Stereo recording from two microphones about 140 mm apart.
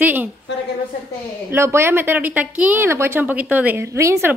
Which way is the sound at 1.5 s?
20° right (ahead or behind).